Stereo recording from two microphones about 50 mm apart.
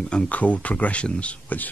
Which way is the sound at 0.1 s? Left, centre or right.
Left.